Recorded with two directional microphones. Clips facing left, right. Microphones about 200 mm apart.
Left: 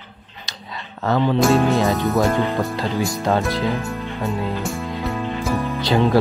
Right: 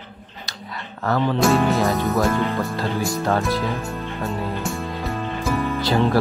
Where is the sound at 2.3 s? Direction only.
15° left (ahead or behind).